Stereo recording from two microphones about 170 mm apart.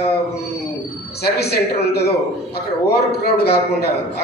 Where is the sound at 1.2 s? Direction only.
70° left (ahead or behind).